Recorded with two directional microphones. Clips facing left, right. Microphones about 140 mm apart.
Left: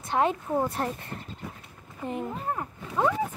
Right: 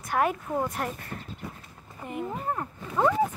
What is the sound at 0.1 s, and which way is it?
Speech, 25° left (ahead or behind).